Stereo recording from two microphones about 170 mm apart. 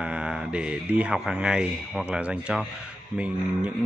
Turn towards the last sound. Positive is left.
turn(degrees=-5)  # may be behind; listen again after turning